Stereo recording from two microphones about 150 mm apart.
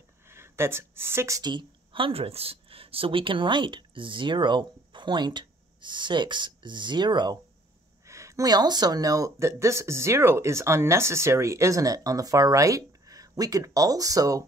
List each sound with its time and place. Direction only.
0.3 s a woman's voice: 15° right (ahead or behind)